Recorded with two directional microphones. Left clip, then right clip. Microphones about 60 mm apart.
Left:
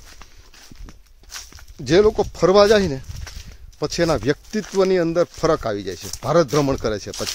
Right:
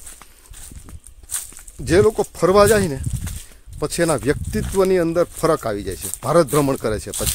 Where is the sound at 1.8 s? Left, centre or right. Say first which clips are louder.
Even; left.